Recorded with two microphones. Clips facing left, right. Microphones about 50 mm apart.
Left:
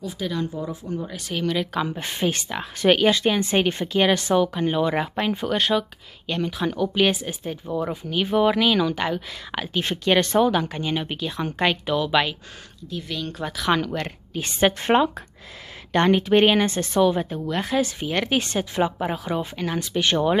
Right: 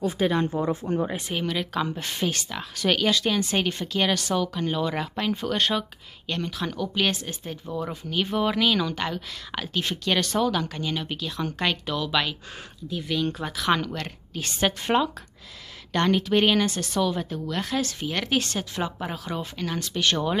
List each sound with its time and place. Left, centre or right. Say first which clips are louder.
0.0 s speech: right 4 dB; right
0.5 s speech: right 4 dB; right
1.5 s speech: left 4 dB; centre
1.8 s speech: left 2 dB; centre
2.0 s speech: left 3 dB; left
12.9 s speech: right 3 dB; centre
13.9 s speech: left 5 dB; left